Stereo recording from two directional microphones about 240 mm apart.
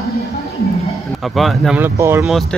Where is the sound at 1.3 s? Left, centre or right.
Centre.